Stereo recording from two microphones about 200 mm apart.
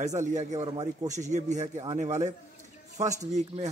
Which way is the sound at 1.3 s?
35° right (ahead or behind).